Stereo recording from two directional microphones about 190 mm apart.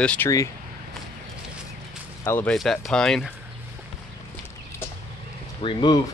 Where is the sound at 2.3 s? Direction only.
10° left (ahead or behind).